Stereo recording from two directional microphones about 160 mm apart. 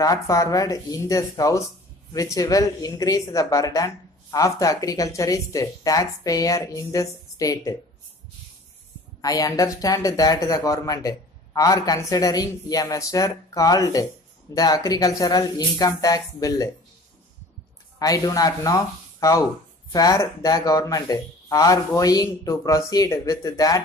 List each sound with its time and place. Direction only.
0.0 s speech: 20° left (ahead or behind)
9.2 s speech: 20° left (ahead or behind)
17.9 s speech: 20° left (ahead or behind)